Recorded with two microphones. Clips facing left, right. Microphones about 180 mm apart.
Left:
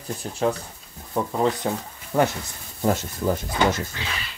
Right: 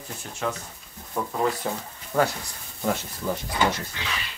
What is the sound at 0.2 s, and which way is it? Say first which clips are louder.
Speech: left 6 dB; 35° left (ahead or behind).